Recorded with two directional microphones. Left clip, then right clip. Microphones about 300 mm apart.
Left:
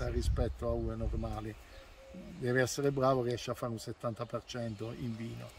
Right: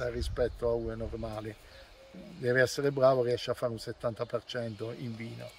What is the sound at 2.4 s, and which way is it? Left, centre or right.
Speech, centre.